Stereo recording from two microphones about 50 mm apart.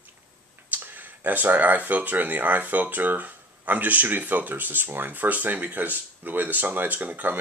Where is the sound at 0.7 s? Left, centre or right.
Right.